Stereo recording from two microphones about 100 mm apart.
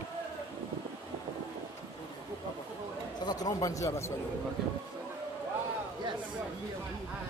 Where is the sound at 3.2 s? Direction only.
45° left (ahead or behind).